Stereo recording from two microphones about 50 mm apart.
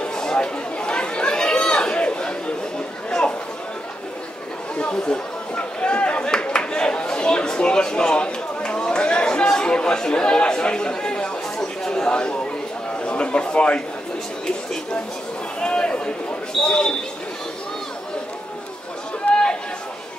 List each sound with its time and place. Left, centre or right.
0.0 s chatter: centre
3.1 s a sound: centre
4.7 s chatter: left
13.0 s a man's voice: centre
15.6 s a sound: centre
16.6 s speech: centre
19.2 s chatter: left